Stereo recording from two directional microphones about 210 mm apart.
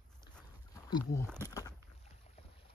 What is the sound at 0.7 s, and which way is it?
Speech, 15° left (ahead or behind).